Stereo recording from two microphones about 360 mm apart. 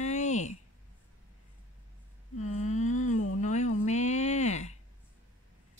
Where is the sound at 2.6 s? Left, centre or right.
Centre.